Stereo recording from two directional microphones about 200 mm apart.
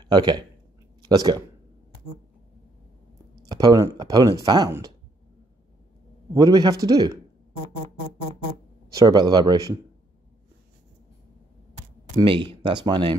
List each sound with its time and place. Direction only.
0.1 s speech: 20° right (ahead or behind)
3.4 s speech: 20° right (ahead or behind)
6.3 s speech: 20° right (ahead or behind)
8.9 s speech: 20° right (ahead or behind)
12.2 s speech: 25° right (ahead or behind)